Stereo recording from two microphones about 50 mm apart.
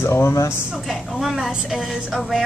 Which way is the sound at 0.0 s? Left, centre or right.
Left.